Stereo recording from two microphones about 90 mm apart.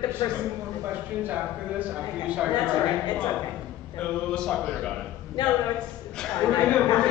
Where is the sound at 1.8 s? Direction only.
15° right (ahead or behind).